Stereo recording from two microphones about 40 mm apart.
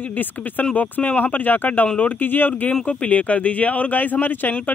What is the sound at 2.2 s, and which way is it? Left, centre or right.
Speech, left.